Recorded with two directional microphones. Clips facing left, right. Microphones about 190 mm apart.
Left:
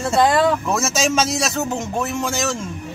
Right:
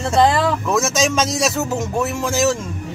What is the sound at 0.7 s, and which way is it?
Speech, centre (ahead or behind).